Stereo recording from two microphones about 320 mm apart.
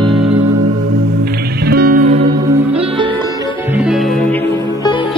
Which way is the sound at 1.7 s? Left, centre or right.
Right.